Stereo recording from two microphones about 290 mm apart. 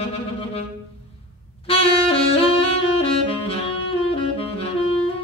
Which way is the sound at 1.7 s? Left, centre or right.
Centre.